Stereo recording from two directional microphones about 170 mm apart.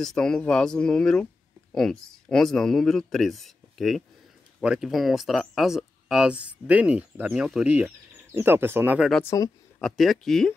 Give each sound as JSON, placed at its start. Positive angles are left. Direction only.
{"t": 0.0, "sound": "speech", "side_deg": 5}
{"t": 9.2, "sound": "speech", "side_deg": 15}
{"t": 9.8, "sound": "speech", "side_deg": 0}